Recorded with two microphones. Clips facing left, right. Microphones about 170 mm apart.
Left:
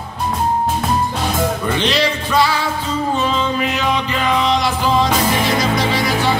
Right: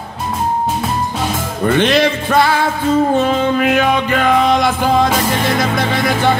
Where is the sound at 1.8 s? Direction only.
50° right (ahead or behind).